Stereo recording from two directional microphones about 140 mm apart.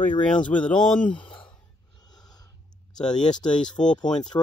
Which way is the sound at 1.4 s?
30° left (ahead or behind).